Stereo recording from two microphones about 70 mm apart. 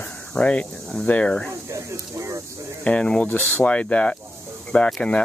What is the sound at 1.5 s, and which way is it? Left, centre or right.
Snake, right.